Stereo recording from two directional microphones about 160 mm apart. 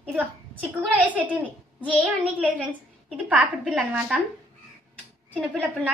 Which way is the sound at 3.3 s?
5° right (ahead or behind).